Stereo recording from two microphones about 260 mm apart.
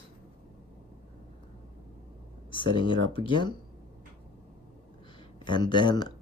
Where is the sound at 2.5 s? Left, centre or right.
Centre.